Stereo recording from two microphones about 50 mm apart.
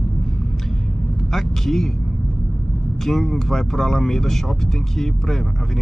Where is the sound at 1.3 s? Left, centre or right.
Centre.